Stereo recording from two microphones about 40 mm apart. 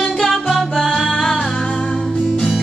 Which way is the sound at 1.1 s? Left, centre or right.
Centre.